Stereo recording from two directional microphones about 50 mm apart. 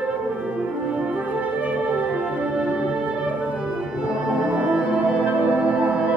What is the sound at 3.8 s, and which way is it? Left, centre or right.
Music, centre.